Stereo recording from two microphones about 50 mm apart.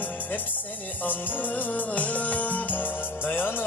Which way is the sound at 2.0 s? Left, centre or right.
Left.